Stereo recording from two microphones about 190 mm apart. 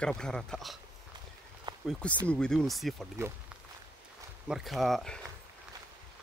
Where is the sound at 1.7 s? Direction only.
20° right (ahead or behind).